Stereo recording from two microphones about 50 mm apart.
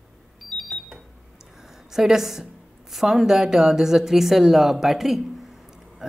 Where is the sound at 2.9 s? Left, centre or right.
Centre.